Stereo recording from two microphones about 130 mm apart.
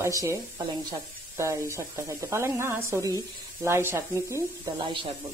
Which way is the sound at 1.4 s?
20° right (ahead or behind).